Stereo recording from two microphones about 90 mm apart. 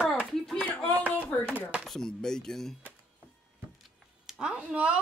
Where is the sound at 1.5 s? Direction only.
15° right (ahead or behind).